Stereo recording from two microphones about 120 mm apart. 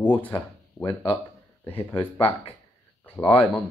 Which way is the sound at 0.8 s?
25° left (ahead or behind).